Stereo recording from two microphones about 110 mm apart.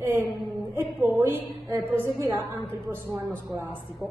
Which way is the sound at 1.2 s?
20° right (ahead or behind).